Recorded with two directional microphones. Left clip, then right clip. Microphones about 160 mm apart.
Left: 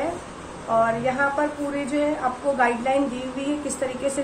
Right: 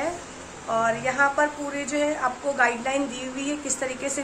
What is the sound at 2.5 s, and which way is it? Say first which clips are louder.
A woman's voice: left 3 dB; 15° right (ahead or behind).